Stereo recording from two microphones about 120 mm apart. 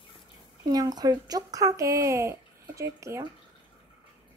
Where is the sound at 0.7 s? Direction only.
30° right (ahead or behind).